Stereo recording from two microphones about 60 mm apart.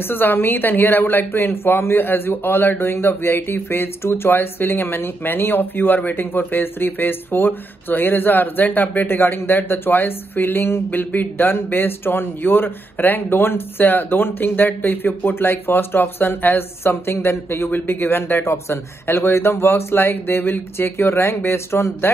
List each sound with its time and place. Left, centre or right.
0.1 s speech: left